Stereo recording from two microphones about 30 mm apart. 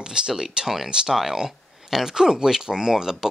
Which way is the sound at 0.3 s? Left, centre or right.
Centre.